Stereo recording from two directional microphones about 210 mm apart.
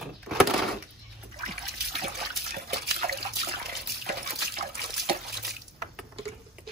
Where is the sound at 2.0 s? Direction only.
45° right (ahead or behind).